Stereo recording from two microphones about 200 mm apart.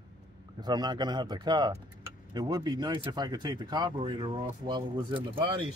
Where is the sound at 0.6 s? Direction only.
20° right (ahead or behind).